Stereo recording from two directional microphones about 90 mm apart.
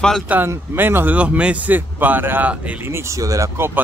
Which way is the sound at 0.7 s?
20° right (ahead or behind).